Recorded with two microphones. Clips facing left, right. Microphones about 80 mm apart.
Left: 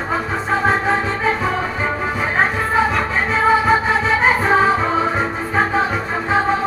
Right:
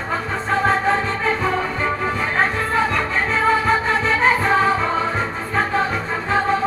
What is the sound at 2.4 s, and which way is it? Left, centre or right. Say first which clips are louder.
Music: left 3 dB; centre.